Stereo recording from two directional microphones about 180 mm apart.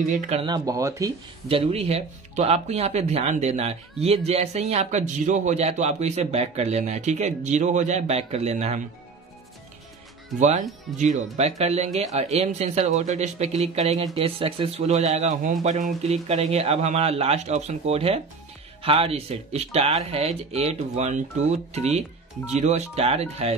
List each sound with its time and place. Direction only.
0.1 s speech: 40° right (ahead or behind)
0.5 s speech: 20° right (ahead or behind)
1.5 s speech: 35° right (ahead or behind)
10.4 s speech: 40° right (ahead or behind)